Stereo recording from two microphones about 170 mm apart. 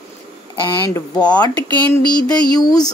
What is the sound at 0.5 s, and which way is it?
Speech, 25° left (ahead or behind).